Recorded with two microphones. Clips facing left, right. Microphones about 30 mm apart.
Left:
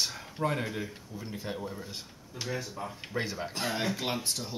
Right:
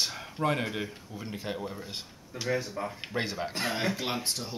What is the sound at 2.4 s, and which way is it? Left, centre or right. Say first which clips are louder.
Speech: right 5 dB; right.